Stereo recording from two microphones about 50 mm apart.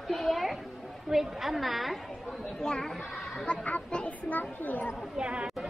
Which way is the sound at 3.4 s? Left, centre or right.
Left.